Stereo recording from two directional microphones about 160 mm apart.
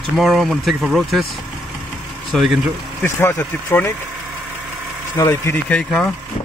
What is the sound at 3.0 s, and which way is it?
Speech, 15° left (ahead or behind).